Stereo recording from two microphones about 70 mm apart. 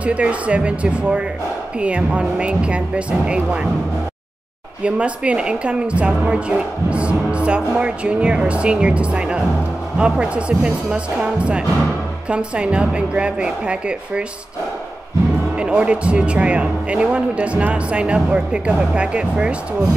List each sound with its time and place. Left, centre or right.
0.0 s a woman's voice: centre
4.8 s a woman's voice: centre
15.5 s a woman's voice: centre